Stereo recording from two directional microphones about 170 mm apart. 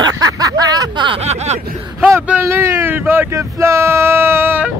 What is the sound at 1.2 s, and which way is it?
Snicker, 40° right (ahead or behind).